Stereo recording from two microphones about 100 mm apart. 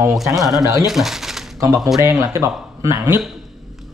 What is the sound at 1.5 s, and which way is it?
Speech, 35° right (ahead or behind).